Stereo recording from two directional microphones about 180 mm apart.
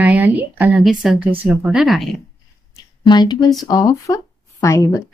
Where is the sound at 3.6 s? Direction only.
20° left (ahead or behind).